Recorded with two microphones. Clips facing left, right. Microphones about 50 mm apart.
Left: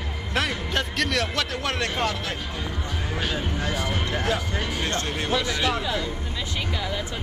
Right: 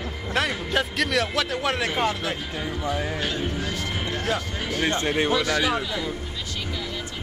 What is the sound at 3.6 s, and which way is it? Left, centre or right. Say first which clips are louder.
Speech: left 2 dB; centre.